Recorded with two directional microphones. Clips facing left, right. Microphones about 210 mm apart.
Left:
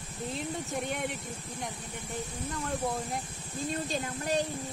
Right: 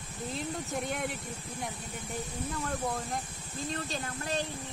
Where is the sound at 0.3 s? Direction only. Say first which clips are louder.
Even; centre (ahead or behind).